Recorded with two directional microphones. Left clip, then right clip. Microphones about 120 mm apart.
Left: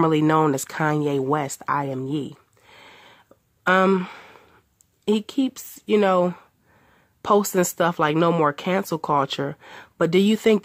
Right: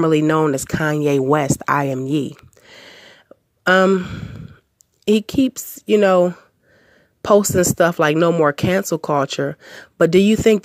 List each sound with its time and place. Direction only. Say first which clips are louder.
0.0 s speech: right 3 dB; 25° right (ahead or behind)
1.1 s a woman's voice: right 7 dB; 35° right (ahead or behind)
2.0 s a sound: right 7 dB; 40° right (ahead or behind)
3.8 s speech: right 4 dB; 15° right (ahead or behind)
5.0 s a woman's voice: right 6 dB; 35° right (ahead or behind)